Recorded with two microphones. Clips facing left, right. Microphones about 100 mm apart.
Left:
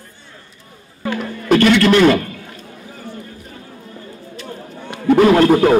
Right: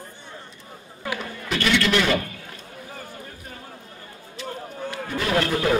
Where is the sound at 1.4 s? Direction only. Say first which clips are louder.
Left 11 dB; 50° left (ahead or behind).